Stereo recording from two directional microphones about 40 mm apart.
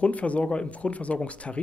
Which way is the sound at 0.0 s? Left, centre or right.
Left.